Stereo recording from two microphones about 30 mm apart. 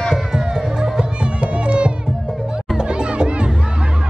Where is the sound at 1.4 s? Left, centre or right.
Right.